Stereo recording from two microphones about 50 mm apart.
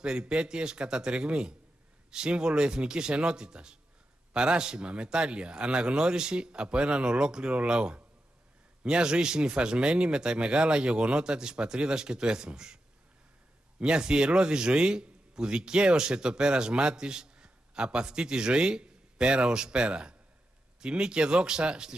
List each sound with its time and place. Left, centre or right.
0.0 s a man's voice: centre